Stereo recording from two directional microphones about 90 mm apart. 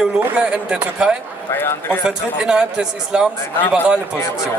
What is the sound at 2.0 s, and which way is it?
A man's voice, 10° right (ahead or behind).